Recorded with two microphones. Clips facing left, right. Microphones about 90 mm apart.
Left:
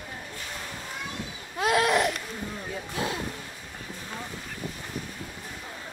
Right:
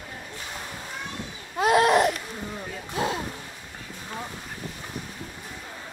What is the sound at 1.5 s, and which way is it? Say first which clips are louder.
Babbling: right 4 dB; 30° right (ahead or behind).